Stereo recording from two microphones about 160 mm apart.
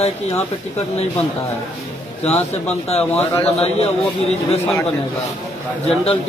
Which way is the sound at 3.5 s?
40° left (ahead or behind).